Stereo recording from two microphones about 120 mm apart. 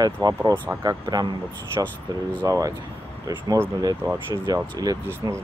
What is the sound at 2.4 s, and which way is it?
Speech, 30° right (ahead or behind).